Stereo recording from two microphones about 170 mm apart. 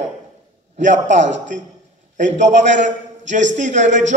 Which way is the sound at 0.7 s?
45° right (ahead or behind).